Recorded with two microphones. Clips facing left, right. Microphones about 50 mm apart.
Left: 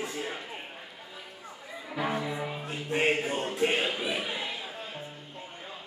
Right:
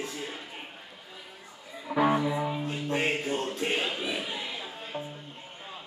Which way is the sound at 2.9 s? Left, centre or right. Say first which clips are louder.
Left 2 dB; centre.